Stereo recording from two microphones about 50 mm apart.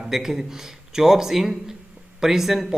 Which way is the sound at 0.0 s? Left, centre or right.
Centre.